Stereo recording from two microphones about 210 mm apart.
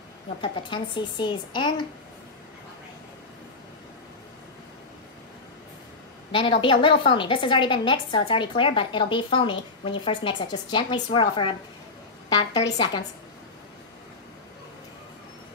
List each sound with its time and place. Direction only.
0.4 s a woman's voice: 25° left (ahead or behind)
6.3 s a woman's voice: 25° left (ahead or behind)